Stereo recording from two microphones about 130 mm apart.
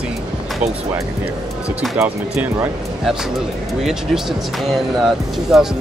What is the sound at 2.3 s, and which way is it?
Speech, 5° right (ahead or behind).